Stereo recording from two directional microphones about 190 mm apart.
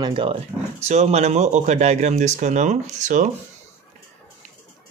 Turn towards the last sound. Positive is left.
turn(degrees=-40)  # may be behind; listen again after turning